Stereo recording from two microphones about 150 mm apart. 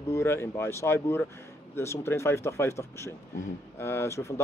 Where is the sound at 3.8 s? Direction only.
15° left (ahead or behind).